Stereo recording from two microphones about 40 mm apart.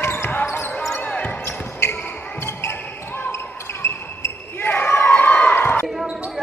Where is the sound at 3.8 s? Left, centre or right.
Left.